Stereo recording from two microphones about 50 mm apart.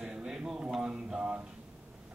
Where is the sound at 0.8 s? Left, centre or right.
Centre.